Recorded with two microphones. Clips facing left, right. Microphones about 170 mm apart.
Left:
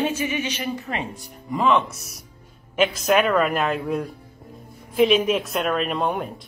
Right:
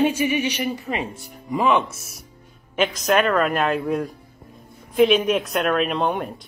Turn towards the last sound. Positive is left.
turn(degrees=5)  # may be behind; listen again after turning